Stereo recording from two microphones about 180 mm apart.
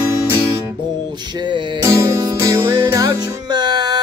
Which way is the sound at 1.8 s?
15° right (ahead or behind).